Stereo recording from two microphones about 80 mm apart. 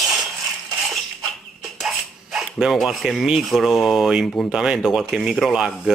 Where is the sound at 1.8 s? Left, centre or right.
Centre.